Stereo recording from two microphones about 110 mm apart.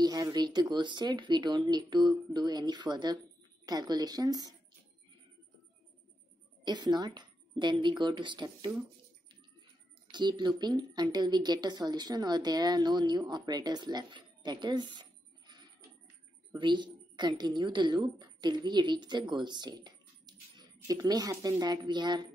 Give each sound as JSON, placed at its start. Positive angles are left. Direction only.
{"t": 0.0, "sound": "speech", "side_deg": -35}
{"t": 6.6, "sound": "speech", "side_deg": -40}
{"t": 10.1, "sound": "a woman's voice", "side_deg": -45}